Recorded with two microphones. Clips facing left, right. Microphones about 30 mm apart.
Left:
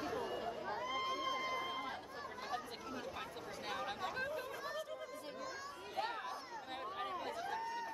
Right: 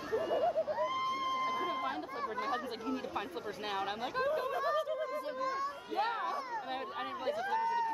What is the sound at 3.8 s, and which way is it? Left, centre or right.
Speech, right.